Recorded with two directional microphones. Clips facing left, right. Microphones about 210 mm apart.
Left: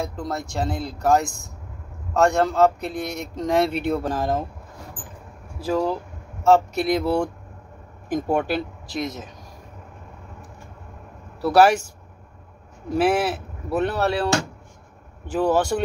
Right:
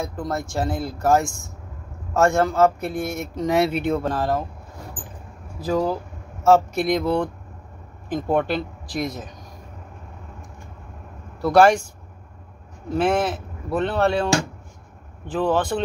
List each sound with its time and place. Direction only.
0.0 s speech: centre (ahead or behind)
4.1 s speech: 15° left (ahead or behind)
5.7 s speech: centre (ahead or behind)
11.4 s speech: 5° left (ahead or behind)
12.9 s speech: 5° left (ahead or behind)